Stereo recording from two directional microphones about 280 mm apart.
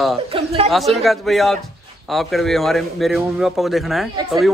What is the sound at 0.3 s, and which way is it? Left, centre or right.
Speech, centre.